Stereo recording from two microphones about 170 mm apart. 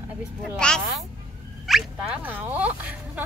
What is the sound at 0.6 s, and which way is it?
Speech, 5° left (ahead or behind).